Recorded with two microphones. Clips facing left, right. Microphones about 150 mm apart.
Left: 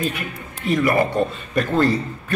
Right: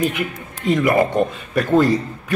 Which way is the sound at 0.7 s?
20° right (ahead or behind).